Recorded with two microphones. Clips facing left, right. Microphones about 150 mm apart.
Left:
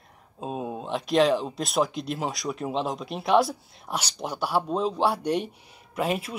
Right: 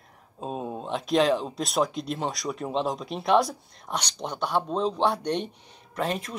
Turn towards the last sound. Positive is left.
turn(degrees=10)  # may be behind; listen again after turning